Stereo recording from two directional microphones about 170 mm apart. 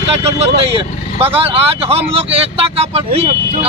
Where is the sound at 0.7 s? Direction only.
35° right (ahead or behind).